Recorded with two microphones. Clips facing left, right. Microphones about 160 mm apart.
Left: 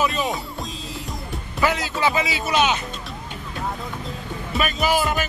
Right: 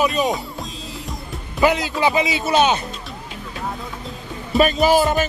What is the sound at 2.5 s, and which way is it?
Speech, 35° right (ahead or behind).